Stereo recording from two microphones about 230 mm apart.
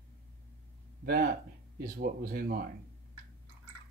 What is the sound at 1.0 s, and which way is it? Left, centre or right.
Speech, right.